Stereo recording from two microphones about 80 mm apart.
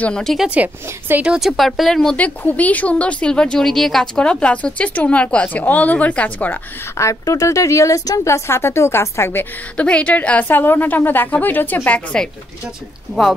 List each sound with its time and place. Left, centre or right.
0.0 s speech: centre
0.5 s a woman's voice: right
1.2 s speech: centre
1.6 s speech: centre
2.1 s speech: centre
7.0 s speech: left
8.5 s speech: left
9.8 s a woman's voice: centre